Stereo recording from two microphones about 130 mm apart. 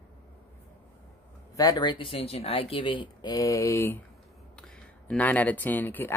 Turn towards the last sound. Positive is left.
turn(degrees=15)  # may be behind; listen again after turning